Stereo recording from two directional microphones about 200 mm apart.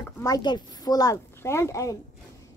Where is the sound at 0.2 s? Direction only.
20° left (ahead or behind).